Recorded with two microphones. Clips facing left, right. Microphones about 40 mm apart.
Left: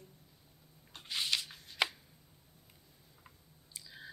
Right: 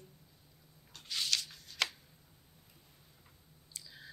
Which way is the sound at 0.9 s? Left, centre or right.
Left.